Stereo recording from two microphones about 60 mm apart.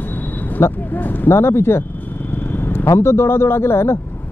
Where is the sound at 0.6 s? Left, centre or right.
Left.